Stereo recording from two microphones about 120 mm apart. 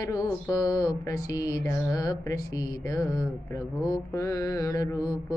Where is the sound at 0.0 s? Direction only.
30° left (ahead or behind).